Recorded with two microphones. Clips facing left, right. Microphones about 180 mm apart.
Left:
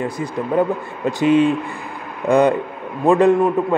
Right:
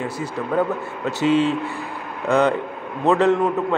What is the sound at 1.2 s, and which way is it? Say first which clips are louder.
Speech: left 4 dB; 55° left (ahead or behind).